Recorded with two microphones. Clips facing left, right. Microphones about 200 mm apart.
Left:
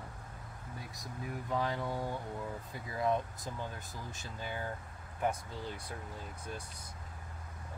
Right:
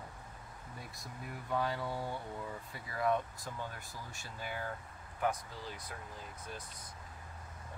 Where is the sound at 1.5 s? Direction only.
15° left (ahead or behind).